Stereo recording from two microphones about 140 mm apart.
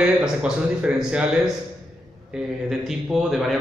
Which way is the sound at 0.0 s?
5° right (ahead or behind).